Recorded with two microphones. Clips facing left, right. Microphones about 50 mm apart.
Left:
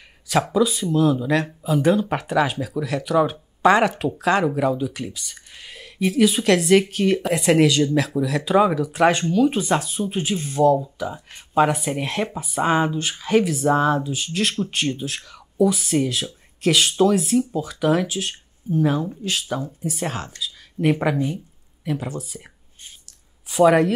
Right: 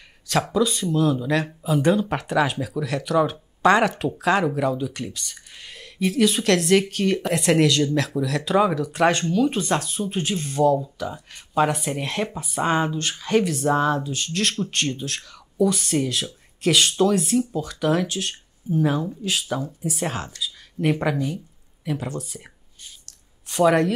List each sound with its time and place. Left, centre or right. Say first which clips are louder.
0.3 s speech: left 2 dB; centre
11.1 s speech: left 4 dB; centre
11.6 s speech: left 2 dB; centre
23.0 s a sound: even; centre